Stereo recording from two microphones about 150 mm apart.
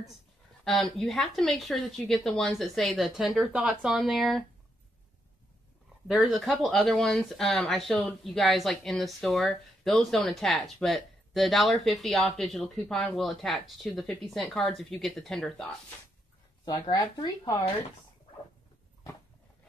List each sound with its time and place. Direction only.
0.7 s speech: centre (ahead or behind)
6.0 s speech: centre (ahead or behind)
16.9 s speech: 25° left (ahead or behind)